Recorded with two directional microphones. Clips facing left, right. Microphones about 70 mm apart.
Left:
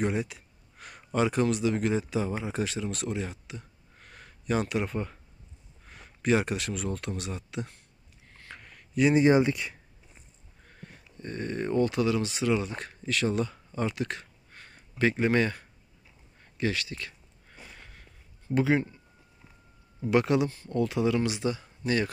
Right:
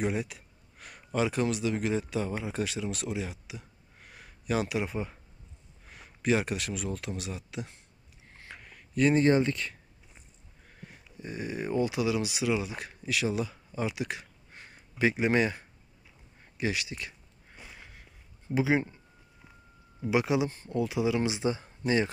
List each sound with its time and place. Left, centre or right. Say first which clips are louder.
0.0 s speech: left 2 dB; centre
10.7 s speech: left 1 dB; centre
16.5 s a sound: left 2 dB; centre
18.5 s speech: left 2 dB; centre
20.0 s speech: left 3 dB; centre
20.4 s speech: left 1 dB; right
20.7 s speech: left 2 dB; centre
21.2 s speech: even; right